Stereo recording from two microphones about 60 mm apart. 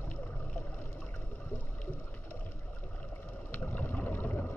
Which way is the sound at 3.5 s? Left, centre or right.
Left.